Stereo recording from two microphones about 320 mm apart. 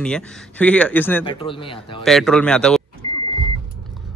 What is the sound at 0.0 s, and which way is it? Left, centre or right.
Speech, centre.